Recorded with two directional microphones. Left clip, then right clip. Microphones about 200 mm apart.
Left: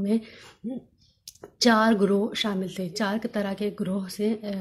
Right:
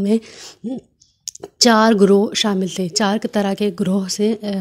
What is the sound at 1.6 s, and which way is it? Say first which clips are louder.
Speech: right 8 dB; 45° right (ahead or behind).